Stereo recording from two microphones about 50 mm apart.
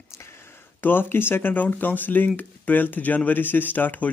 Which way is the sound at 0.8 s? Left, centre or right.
Left.